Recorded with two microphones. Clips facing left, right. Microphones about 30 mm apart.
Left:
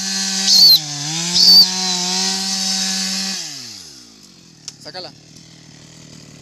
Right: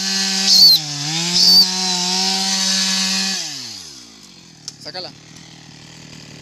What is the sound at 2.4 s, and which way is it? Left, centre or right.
Chainsaw, right.